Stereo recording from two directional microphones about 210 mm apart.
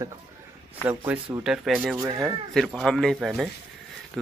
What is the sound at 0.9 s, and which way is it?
Speech, 10° right (ahead or behind).